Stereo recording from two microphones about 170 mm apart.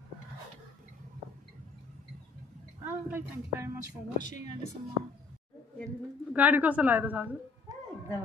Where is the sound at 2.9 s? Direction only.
15° right (ahead or behind).